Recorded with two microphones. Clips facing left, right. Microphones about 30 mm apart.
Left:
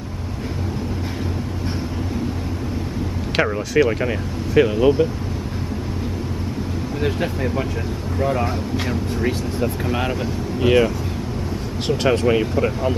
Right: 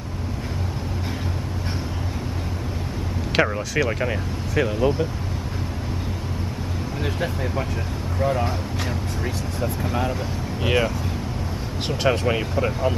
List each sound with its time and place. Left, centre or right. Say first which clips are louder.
3.3 s speech: left 3 dB; centre
4.6 s speech: left 5 dB; centre
7.0 s speech: left 4 dB; centre
10.6 s speech: left 6 dB; centre
11.9 s speech: left 4 dB; centre